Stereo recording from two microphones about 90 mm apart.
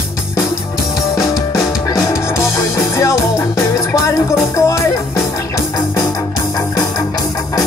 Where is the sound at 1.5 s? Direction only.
40° left (ahead or behind).